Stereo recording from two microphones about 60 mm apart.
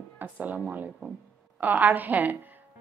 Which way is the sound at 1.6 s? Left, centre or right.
Right.